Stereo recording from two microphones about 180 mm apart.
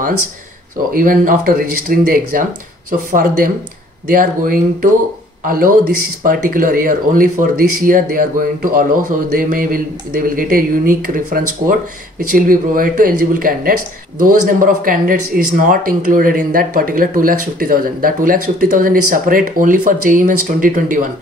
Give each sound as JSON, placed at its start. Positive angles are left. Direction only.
{"t": 0.9, "sound": "speech", "side_deg": -50}